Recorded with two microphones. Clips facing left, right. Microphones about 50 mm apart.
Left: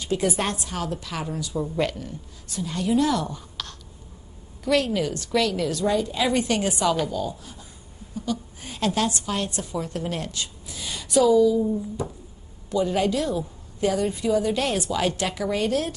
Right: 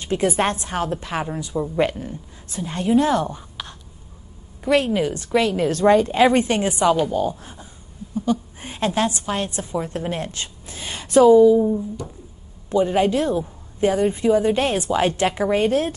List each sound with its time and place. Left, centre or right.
0.0 s a woman's voice: right
5.7 s a woman's voice: right